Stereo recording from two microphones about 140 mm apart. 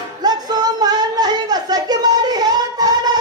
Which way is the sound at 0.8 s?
30° right (ahead or behind).